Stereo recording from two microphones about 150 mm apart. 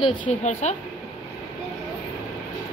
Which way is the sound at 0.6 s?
50° left (ahead or behind).